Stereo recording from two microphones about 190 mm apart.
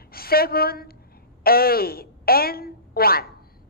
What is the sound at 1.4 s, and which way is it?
A woman's voice, 50° left (ahead or behind).